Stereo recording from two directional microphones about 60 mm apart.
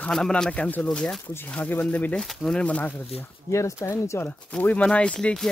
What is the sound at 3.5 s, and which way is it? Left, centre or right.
Speech, left.